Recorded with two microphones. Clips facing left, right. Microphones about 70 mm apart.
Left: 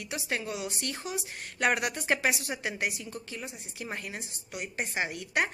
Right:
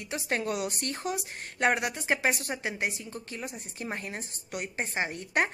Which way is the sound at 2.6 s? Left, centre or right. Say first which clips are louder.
Even; right.